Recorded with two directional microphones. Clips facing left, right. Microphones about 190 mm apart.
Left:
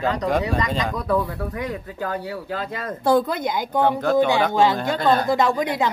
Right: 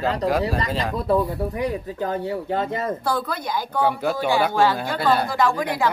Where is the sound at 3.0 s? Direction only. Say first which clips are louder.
Left 6 dB; 20° left (ahead or behind).